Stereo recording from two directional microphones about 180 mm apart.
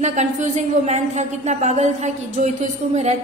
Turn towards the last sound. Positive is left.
turn(degrees=-40)  # may be behind; listen again after turning